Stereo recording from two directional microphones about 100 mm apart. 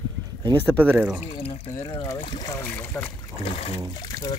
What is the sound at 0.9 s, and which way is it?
Speech, 10° right (ahead or behind).